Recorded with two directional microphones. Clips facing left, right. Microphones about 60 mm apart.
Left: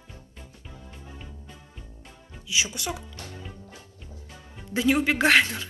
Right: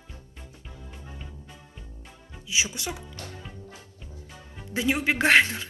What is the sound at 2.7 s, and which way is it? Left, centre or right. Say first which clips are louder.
Speech: left 2 dB; right.